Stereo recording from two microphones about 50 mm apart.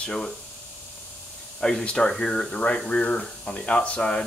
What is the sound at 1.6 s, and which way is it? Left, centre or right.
Speech, centre.